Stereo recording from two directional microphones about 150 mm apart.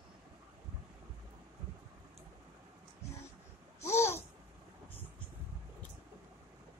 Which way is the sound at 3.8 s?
15° left (ahead or behind).